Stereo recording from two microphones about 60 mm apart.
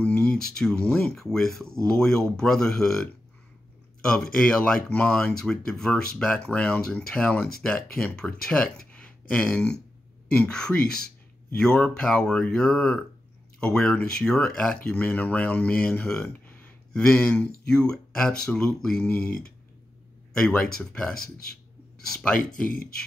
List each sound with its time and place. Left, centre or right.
0.0 s a sound: left
0.4 s speech: centre
5.4 s speech: centre; by 16.1 s left
17.2 s speech: left
17.6 s speech: centre
19.0 s speech: left
20.3 s speech: centre